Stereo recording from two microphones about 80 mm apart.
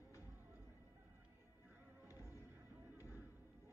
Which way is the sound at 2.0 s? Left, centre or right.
Right.